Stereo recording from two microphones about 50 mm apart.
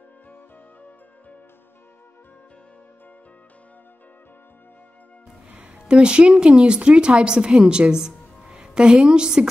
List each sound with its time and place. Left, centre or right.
5.5 s a woman's voice: right